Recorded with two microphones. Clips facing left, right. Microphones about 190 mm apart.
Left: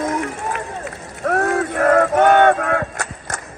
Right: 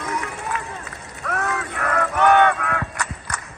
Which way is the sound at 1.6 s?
40° left (ahead or behind).